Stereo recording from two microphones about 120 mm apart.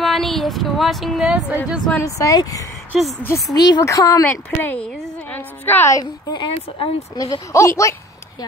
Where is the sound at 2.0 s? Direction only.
30° left (ahead or behind).